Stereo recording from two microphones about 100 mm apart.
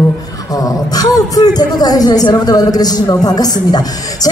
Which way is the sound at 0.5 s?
40° left (ahead or behind).